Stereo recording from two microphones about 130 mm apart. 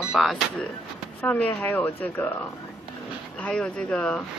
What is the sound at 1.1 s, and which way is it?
Speech, 10° left (ahead or behind).